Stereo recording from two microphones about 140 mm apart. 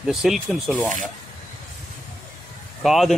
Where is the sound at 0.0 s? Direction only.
5° right (ahead or behind).